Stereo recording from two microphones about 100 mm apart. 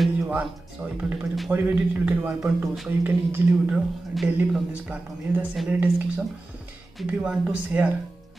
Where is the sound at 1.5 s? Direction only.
20° right (ahead or behind).